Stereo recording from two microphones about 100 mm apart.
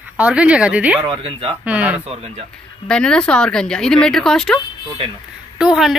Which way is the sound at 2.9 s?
10° left (ahead or behind).